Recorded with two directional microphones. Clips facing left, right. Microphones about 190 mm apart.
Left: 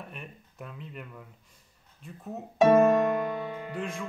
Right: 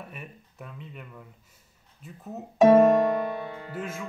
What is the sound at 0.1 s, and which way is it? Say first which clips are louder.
Speech: right 1 dB; centre (ahead or behind).